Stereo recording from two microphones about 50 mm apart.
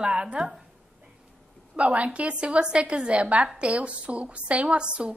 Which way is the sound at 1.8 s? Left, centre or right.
Right.